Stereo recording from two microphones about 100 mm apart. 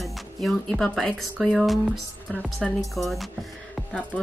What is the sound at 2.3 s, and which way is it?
Speech, 10° left (ahead or behind).